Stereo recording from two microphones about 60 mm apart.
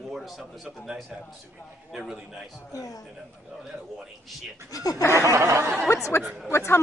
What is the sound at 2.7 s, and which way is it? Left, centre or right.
Speech, left.